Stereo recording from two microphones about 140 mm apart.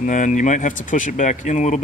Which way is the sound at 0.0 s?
65° left (ahead or behind).